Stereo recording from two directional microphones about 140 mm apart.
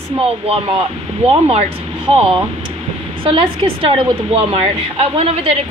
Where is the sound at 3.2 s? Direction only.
40° right (ahead or behind).